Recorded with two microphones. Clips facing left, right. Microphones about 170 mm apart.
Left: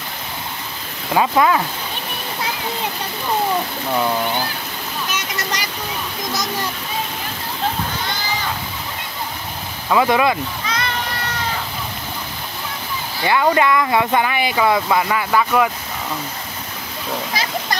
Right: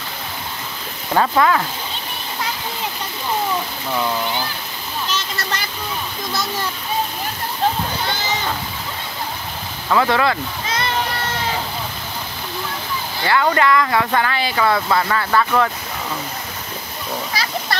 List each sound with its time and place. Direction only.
1.1 s speech: 10° left (ahead or behind)
5.1 s a sound: 15° left (ahead or behind)
9.8 s speech: 15° left (ahead or behind)
13.2 s speech: 15° left (ahead or behind)